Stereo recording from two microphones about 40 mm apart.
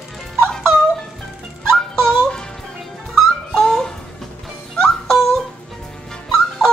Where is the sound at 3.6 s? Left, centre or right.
Centre.